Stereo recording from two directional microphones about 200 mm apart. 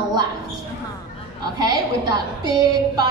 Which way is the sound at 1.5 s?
20° right (ahead or behind).